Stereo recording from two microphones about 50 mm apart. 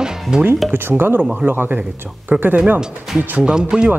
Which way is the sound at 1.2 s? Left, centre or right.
Centre.